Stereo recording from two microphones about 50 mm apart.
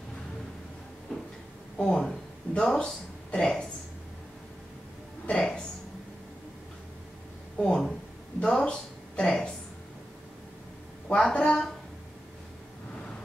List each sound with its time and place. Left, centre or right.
1.1 s a sound: centre
1.8 s speech: centre
5.3 s music: centre
7.5 s speech: centre
11.1 s speech: centre